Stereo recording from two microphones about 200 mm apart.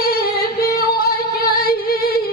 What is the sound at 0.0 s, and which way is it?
Singing, 45° left (ahead or behind).